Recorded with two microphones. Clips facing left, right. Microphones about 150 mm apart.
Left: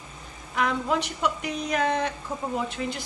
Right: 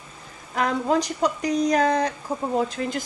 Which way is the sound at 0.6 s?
40° right (ahead or behind).